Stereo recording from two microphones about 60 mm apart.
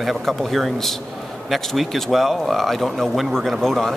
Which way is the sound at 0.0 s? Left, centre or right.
Centre.